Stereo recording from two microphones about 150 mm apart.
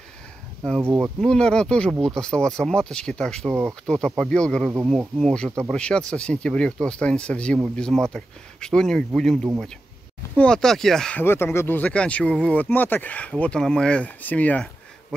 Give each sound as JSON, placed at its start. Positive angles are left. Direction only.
{"t": 0.7, "sound": "speech", "side_deg": -15}
{"t": 1.2, "sound": "speech", "side_deg": 5}